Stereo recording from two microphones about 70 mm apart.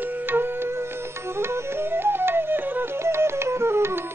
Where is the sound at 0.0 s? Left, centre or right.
Right.